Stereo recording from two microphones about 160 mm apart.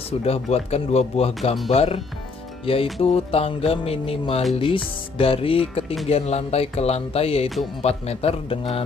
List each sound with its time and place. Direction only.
0.2 s speech: 40° left (ahead or behind)